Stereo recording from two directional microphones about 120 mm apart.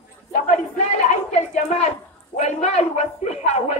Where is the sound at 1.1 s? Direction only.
75° left (ahead or behind).